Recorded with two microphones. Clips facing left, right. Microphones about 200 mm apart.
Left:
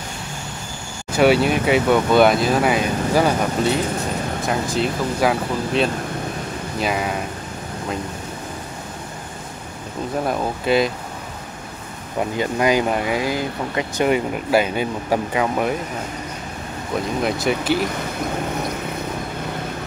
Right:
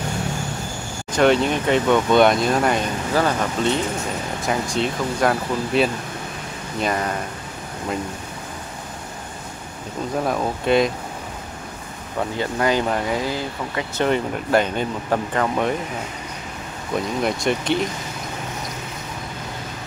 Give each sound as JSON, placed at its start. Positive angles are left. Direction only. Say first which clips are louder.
{"t": 1.1, "sound": "speech", "louder": "left 1 dB", "side_deg": 5}
{"t": 10.2, "sound": "speech", "louder": "even", "side_deg": 0}
{"t": 12.2, "sound": "speech", "louder": "left 2 dB", "side_deg": 15}
{"t": 17.2, "sound": "speech", "louder": "left 1 dB", "side_deg": 5}